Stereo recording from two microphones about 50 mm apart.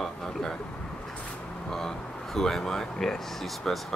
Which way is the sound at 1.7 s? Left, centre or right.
Centre.